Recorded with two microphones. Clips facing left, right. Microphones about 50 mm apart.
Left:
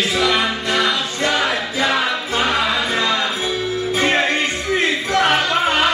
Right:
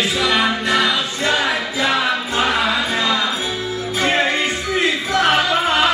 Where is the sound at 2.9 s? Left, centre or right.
Centre.